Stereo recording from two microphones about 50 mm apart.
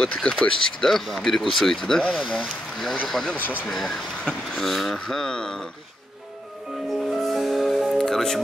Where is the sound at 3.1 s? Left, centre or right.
Centre.